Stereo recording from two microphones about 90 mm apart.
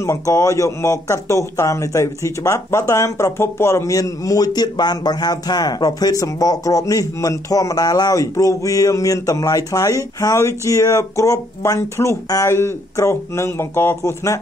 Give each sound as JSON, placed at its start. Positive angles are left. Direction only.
{"t": 0.0, "sound": "a man's voice", "side_deg": 35}